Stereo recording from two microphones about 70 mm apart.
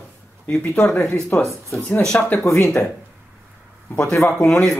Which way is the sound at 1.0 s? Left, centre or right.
Left.